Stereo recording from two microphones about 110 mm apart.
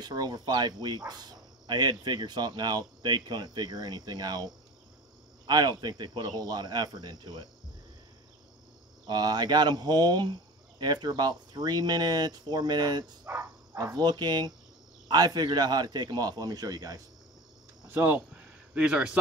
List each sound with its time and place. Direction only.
0.0 s speech: 40° right (ahead or behind)
5.5 s speech: 40° right (ahead or behind)
9.0 s speech: 40° right (ahead or behind)
13.2 s speech: 20° right (ahead or behind)
13.9 s speech: 40° right (ahead or behind)
17.8 s a sound: 15° right (ahead or behind)